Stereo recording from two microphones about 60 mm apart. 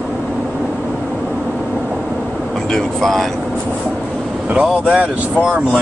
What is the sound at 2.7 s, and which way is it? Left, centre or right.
Speech, centre.